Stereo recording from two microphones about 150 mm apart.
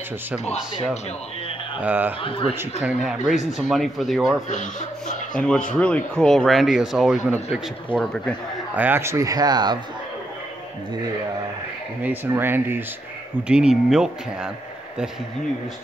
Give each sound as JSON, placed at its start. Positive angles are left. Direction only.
{"t": 1.8, "sound": "speech", "side_deg": -10}
{"t": 4.5, "sound": "speech", "side_deg": 55}
{"t": 5.3, "sound": "speech", "side_deg": 5}
{"t": 8.7, "sound": "speech", "side_deg": -15}
{"t": 12.0, "sound": "speech", "side_deg": -15}